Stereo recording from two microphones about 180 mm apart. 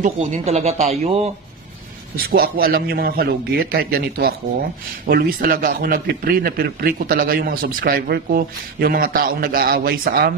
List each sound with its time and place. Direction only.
0.0 s speech: 40° right (ahead or behind)
2.1 s a man's voice: 55° right (ahead or behind)